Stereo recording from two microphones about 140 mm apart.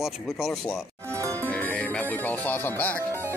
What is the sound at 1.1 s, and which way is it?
Music, 20° right (ahead or behind).